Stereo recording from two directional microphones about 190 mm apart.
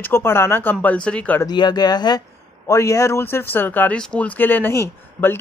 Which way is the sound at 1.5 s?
20° left (ahead or behind).